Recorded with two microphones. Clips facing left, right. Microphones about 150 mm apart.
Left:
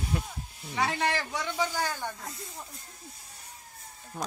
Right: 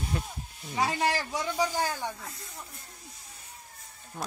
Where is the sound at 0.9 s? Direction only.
35° right (ahead or behind).